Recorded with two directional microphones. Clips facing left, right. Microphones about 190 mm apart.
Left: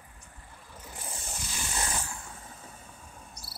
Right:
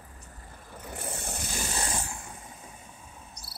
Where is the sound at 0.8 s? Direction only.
60° right (ahead or behind).